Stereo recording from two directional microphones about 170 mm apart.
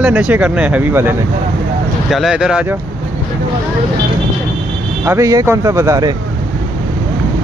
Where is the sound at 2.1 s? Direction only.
Centre (ahead or behind).